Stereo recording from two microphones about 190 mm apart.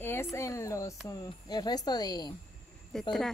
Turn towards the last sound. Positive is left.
turn(degrees=0)  # may be behind; listen again after turning